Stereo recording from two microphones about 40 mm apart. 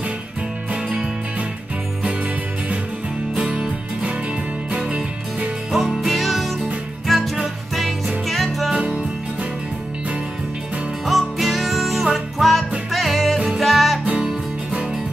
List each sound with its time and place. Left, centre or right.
0.8 s music: centre
3.3 s music: right
5.7 s music: centre
8.3 s music: centre
8.7 s music: right
11.1 s music: centre
14.2 s music: right